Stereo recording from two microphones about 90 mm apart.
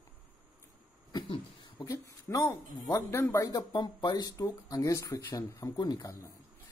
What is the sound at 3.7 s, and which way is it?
Speech, 60° left (ahead or behind).